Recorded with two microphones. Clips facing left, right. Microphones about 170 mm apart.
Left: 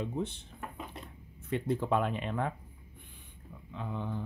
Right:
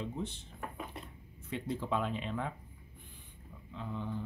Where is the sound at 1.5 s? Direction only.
55° left (ahead or behind).